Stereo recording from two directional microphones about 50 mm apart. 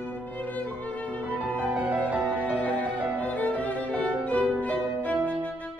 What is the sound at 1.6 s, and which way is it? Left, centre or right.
Music, right.